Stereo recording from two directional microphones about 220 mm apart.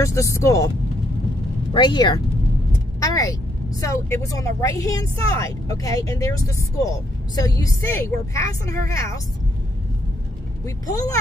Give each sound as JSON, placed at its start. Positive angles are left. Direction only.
{"t": 0.0, "sound": "speech", "side_deg": 15}
{"t": 1.7, "sound": "speech", "side_deg": 20}
{"t": 3.0, "sound": "a sound", "side_deg": 15}
{"t": 3.8, "sound": "speech", "side_deg": 15}
{"t": 10.6, "sound": "speech", "side_deg": 15}